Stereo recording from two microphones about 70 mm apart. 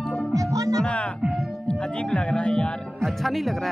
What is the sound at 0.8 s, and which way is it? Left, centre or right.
Music, centre.